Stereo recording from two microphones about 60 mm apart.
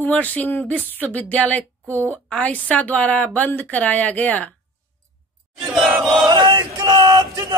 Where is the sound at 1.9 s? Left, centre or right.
Right.